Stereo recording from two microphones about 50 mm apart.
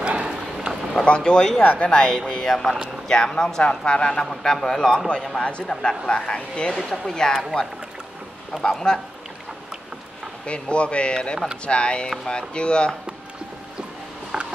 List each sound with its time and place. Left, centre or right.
0.0 s a sound: centre
1.0 s a man's voice: centre
1.6 s a woman's voice: left
1.9 s a man's voice: centre
4.1 s a man's voice: centre
8.6 s a man's voice: centre
10.4 s speech: left
14.3 s a sound: centre